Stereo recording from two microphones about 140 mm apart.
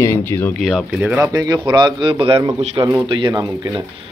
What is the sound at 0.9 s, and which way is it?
Speech, 10° right (ahead or behind).